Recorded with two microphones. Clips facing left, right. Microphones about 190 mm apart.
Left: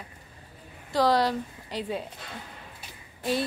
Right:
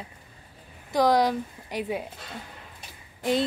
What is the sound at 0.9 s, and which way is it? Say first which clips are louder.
Speech: right 2 dB; 15° right (ahead or behind).